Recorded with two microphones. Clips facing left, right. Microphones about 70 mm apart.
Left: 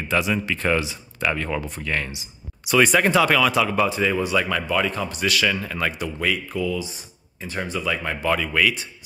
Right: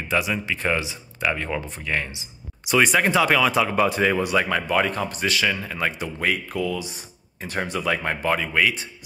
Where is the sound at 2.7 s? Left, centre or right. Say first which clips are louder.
Left 1 dB; centre.